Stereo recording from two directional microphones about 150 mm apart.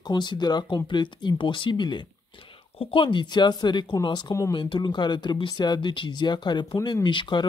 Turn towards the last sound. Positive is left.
turn(degrees=30)  # may be behind; listen again after turning